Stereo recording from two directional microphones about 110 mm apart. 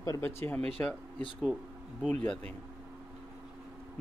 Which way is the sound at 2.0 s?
10° left (ahead or behind).